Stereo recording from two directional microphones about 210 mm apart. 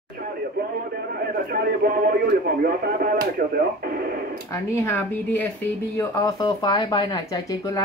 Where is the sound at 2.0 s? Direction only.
45° right (ahead or behind).